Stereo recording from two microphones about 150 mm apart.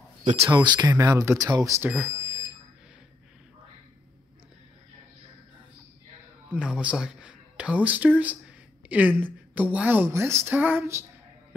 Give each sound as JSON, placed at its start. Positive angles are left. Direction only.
{"t": 0.2, "sound": "speech", "side_deg": -35}
{"t": 1.8, "sound": "a woman's voice", "side_deg": -15}
{"t": 6.5, "sound": "a woman's voice", "side_deg": -5}